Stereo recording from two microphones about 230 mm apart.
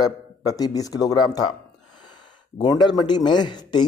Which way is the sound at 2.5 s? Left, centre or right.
Centre.